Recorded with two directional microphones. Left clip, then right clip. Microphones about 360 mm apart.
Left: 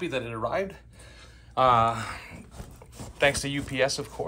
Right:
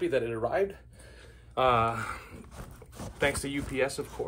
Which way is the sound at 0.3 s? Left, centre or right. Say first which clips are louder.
Even; centre.